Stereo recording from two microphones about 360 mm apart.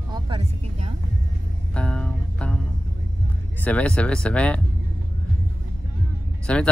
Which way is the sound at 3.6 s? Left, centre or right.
Centre.